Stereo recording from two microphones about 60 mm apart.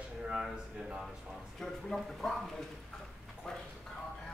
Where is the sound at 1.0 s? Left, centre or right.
Centre.